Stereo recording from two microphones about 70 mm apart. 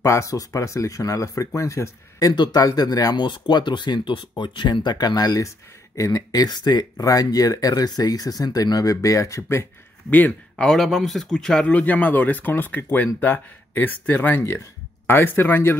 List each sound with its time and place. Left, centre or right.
0.0 s speech: left
2.3 s speech: left
5.9 s speech: left
6.3 s speech: left
10.5 s speech: centre
11.7 s speech: left
15.0 s speech: left